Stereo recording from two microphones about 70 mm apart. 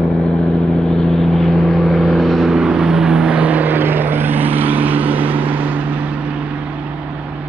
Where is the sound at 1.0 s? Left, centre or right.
Centre; by 5.8 s right.